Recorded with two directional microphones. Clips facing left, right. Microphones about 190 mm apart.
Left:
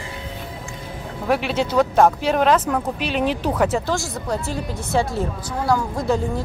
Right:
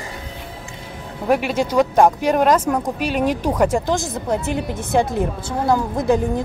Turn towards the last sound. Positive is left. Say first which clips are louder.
# right 3 dB
turn(degrees=-20)  # may be behind; listen again after turning